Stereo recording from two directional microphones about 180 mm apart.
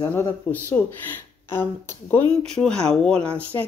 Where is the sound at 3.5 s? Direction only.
20° left (ahead or behind).